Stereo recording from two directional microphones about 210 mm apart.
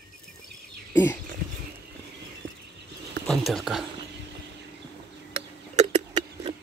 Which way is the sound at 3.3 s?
Centre (ahead or behind).